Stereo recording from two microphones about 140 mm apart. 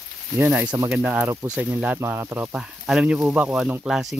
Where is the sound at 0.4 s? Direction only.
10° right (ahead or behind).